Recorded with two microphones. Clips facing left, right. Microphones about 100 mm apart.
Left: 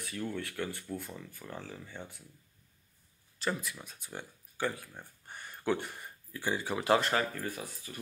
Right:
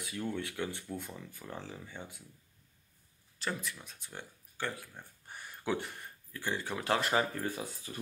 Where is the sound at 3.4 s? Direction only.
5° left (ahead or behind).